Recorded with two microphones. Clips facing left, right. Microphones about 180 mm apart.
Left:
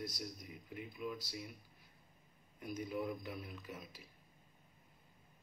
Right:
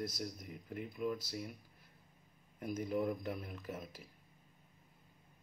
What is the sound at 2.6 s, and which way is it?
Speech, 50° right (ahead or behind).